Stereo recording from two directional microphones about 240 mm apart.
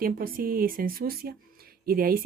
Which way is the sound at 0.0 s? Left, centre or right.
Right.